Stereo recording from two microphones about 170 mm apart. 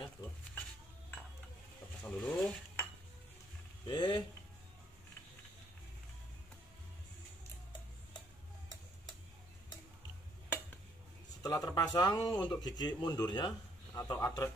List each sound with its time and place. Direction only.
0.2 s speech: 25° left (ahead or behind)
2.0 s stir: 10° left (ahead or behind)
3.8 s a sound: 30° left (ahead or behind)
11.4 s a man's voice: 20° left (ahead or behind)